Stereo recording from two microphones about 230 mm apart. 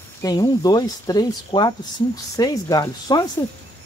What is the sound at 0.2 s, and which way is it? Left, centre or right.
Speech, centre.